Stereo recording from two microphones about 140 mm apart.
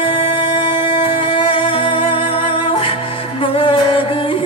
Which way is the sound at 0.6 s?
40° left (ahead or behind).